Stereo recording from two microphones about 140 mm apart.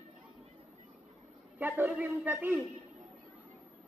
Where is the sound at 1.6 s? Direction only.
15° right (ahead or behind).